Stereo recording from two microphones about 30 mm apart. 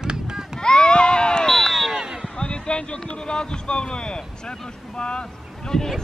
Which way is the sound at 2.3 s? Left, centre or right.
Left.